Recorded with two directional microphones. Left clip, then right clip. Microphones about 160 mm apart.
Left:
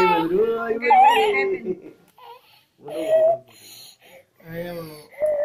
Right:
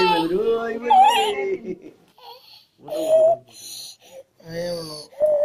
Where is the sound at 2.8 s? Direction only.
45° right (ahead or behind).